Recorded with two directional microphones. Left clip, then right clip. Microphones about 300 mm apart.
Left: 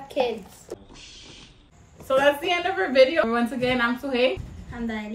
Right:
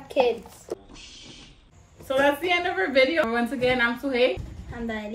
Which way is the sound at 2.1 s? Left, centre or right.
Centre.